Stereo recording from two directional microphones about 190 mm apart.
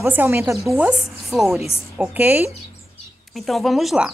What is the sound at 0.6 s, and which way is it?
Speech, 5° right (ahead or behind).